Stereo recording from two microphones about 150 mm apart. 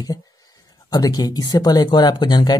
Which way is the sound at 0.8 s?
25° left (ahead or behind).